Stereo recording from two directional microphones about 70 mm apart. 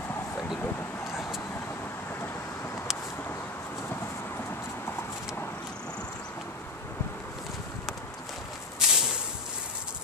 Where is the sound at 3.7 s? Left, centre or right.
Left.